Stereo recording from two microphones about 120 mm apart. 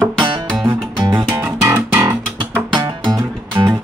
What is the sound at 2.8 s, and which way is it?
Music, 30° right (ahead or behind).